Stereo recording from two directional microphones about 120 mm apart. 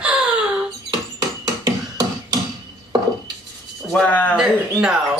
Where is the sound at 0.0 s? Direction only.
10° right (ahead or behind).